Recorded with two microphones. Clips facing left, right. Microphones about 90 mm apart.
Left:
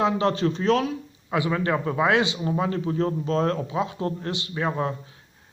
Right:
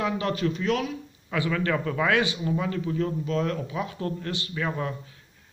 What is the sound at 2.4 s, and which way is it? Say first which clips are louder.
Speech: left 3 dB; 35° left (ahead or behind).